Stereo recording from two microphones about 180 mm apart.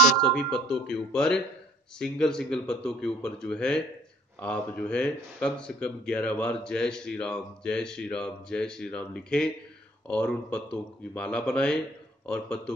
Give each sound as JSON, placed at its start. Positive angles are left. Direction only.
{"t": 0.2, "sound": "speech", "side_deg": 5}